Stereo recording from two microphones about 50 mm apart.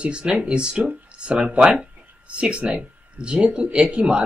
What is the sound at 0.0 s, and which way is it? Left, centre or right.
Speech, right.